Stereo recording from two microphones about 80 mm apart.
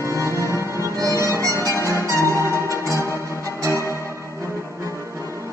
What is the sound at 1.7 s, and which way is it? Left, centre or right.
Music, left.